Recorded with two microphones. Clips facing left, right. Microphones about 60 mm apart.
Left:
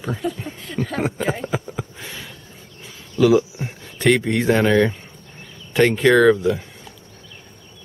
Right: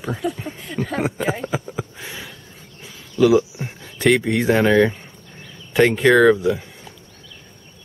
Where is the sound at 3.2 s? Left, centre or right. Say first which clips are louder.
Even; centre.